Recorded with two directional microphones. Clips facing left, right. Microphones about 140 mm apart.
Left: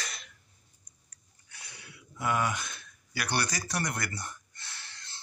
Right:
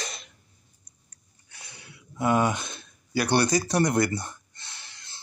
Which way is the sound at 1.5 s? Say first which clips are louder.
Right 2 dB; 25° right (ahead or behind).